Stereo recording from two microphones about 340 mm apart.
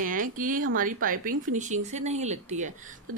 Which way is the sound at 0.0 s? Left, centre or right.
Right.